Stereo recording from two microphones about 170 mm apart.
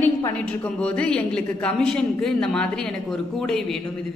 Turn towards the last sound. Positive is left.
turn(degrees=0)  # may be behind; listen again after turning